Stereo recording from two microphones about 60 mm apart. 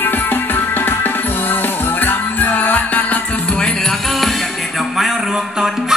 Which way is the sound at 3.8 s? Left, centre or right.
Centre.